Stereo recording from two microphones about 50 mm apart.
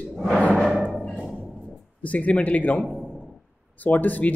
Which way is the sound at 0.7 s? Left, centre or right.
Centre.